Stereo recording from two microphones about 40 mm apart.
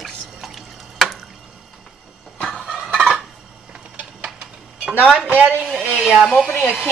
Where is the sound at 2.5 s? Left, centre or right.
Centre.